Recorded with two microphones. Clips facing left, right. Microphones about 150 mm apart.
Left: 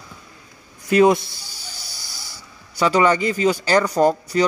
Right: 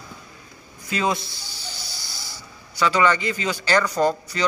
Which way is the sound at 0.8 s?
60° left (ahead or behind).